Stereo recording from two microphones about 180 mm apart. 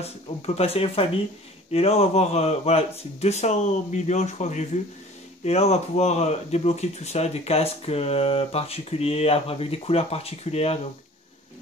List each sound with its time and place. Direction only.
0.6 s speech: 35° left (ahead or behind)